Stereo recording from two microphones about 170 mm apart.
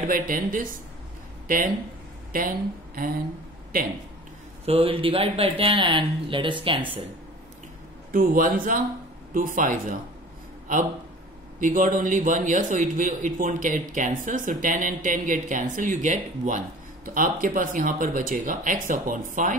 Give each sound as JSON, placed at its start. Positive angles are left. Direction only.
{"t": 0.0, "sound": "a man's voice", "side_deg": -55}
{"t": 2.3, "sound": "a woman's voice", "side_deg": -55}
{"t": 4.6, "sound": "speech", "side_deg": -35}
{"t": 8.1, "sound": "a man's voice", "side_deg": -55}
{"t": 11.6, "sound": "a man's voice", "side_deg": -50}